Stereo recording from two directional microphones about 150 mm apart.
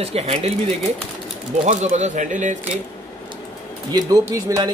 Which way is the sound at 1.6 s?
55° right (ahead or behind).